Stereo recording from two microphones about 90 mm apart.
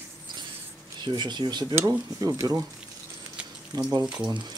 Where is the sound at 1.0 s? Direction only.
55° right (ahead or behind).